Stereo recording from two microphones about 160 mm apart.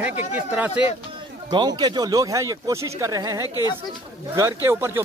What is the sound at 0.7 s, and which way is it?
Speech, 35° left (ahead or behind).